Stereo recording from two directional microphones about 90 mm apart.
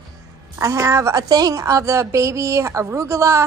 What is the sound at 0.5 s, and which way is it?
A woman's voice, 35° right (ahead or behind).